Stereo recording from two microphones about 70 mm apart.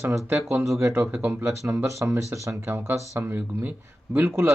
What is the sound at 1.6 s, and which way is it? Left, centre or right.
Speech, right.